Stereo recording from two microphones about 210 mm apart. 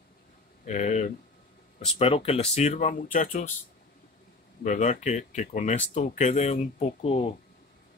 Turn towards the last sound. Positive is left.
turn(degrees=30)  # may be behind; listen again after turning